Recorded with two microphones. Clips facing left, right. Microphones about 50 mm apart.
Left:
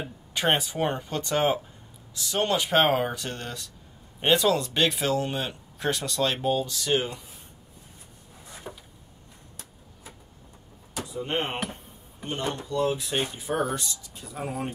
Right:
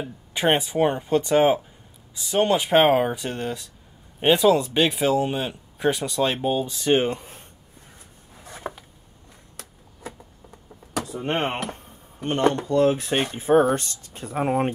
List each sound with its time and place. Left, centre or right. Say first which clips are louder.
0.3 s speech: right 4 dB; centre; by 7.4 s right
8.5 s a sound: right 7 dB; right
10.9 s speech: right 4 dB; right